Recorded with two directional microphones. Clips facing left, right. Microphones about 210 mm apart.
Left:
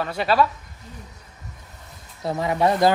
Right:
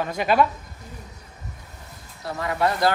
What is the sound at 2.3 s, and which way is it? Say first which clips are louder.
Speech: left 3 dB; 20° left (ahead or behind).